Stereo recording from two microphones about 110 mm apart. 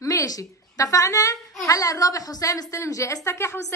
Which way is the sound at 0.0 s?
30° left (ahead or behind).